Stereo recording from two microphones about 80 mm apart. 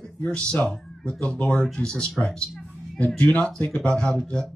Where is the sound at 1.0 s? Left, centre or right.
Centre.